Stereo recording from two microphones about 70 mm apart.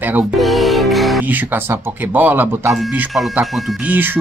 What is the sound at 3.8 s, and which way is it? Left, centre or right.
Speech, right.